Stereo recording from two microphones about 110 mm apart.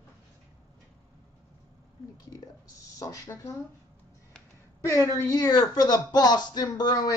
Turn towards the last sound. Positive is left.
turn(degrees=40)  # may be behind; listen again after turning